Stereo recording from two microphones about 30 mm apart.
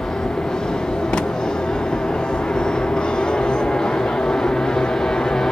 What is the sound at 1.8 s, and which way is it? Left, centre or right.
Vehicle, left.